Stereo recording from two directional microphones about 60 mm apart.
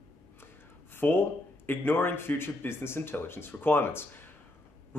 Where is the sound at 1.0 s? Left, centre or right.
Left.